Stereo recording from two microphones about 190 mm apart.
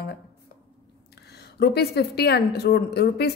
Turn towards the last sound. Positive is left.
turn(degrees=60)  # may be behind; listen again after turning